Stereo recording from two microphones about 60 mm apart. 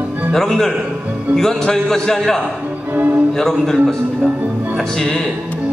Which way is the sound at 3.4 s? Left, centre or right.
Centre.